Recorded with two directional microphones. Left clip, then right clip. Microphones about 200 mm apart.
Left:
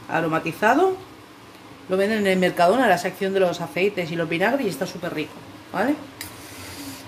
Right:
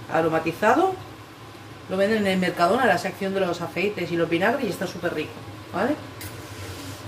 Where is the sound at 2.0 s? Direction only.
45° left (ahead or behind).